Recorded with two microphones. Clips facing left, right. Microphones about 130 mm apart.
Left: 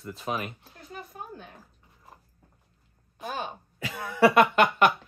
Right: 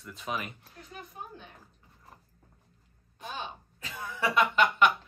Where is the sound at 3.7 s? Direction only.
80° left; by 4.9 s 50° left (ahead or behind).